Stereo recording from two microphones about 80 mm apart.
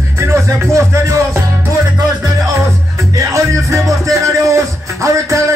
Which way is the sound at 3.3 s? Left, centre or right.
Right.